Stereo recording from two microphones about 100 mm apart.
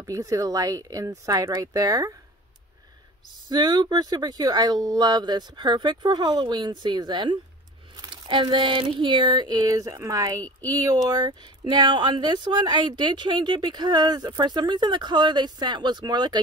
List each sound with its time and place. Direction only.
0.0 s speech: 35° right (ahead or behind)
3.4 s speech: 45° right (ahead or behind)